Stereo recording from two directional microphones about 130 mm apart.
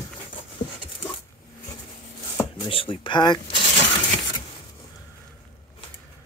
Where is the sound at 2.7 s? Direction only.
40° left (ahead or behind).